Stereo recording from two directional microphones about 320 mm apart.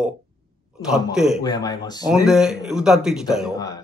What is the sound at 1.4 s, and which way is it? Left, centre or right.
Speech, centre.